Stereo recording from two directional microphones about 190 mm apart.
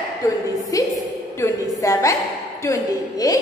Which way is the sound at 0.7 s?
15° left (ahead or behind).